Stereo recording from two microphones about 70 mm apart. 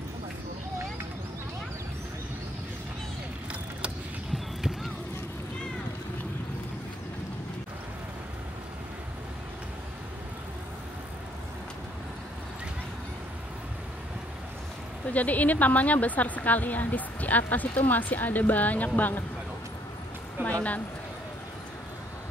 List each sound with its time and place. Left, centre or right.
15.0 s speech: left
20.4 s speech: right